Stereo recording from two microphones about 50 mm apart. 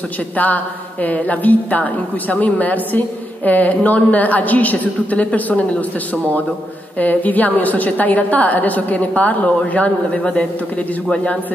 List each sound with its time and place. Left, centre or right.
1.0 s a woman's voice: left
7.0 s a woman's voice: left